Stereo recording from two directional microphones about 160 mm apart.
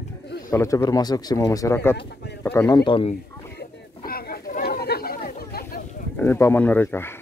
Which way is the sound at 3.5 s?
70° left (ahead or behind).